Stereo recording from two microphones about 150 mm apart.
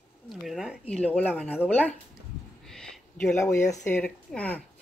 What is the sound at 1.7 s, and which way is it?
Speech, 10° left (ahead or behind).